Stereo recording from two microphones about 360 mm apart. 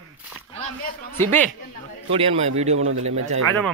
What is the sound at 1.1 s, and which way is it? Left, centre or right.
Speech, centre.